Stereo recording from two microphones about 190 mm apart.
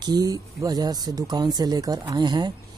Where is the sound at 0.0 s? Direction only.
20° right (ahead or behind).